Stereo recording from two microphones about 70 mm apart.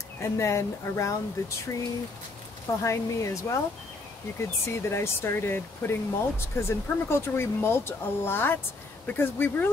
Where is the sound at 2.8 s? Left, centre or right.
Left.